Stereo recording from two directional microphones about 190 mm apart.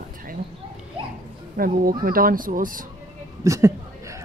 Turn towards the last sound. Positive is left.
turn(degrees=-15)  # may be behind; listen again after turning